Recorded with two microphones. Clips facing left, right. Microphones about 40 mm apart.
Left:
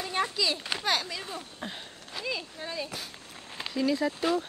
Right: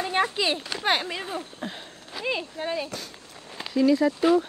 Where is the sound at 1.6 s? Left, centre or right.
Centre.